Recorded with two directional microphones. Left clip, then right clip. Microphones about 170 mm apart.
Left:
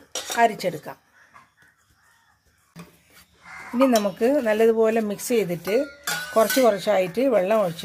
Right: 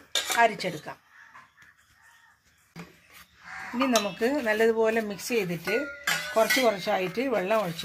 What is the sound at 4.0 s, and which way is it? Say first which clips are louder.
Speech: left 5 dB; 60° left (ahead or behind).